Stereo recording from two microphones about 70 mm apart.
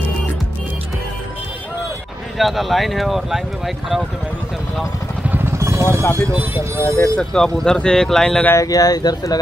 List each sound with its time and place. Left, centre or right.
2.3 s speech: centre
5.4 s vehicle: right
6.5 s speech: right
7.0 s speech: centre
8.5 s speech: left